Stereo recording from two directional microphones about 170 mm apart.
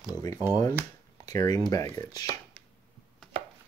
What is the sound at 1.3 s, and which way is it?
Speech, 20° left (ahead or behind).